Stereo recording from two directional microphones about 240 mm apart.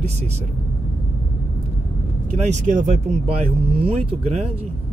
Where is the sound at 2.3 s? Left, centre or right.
Right.